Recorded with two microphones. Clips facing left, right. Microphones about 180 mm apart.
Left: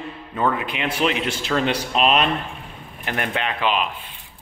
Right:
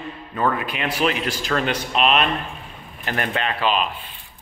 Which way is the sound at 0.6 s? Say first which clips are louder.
Even; 20° left (ahead or behind).